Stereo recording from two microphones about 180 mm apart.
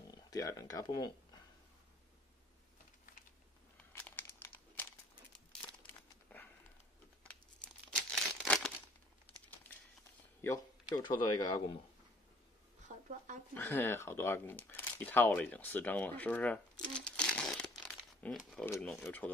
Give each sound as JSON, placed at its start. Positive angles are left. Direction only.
{"t": 0.1, "sound": "speech", "side_deg": 20}
{"t": 3.9, "sound": "crumpling", "side_deg": 10}
{"t": 7.2, "sound": "crumpling", "side_deg": 5}
{"t": 10.9, "sound": "speech", "side_deg": 25}
{"t": 13.6, "sound": "speech", "side_deg": 10}
{"t": 16.8, "sound": "crumpling", "side_deg": 5}
{"t": 18.2, "sound": "speech", "side_deg": 5}